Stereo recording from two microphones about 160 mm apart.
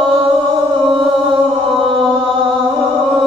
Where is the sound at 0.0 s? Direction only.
30° right (ahead or behind).